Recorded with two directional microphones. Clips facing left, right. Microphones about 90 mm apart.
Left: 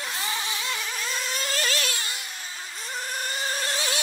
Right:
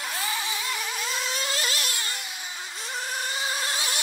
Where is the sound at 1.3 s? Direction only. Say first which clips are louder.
Left 1 dB; 45° left (ahead or behind).